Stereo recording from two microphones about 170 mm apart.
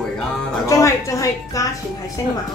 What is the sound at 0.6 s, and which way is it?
A woman's voice, 20° left (ahead or behind).